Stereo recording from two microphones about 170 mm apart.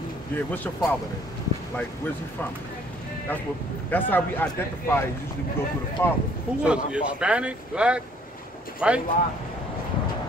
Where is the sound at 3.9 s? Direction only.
10° left (ahead or behind).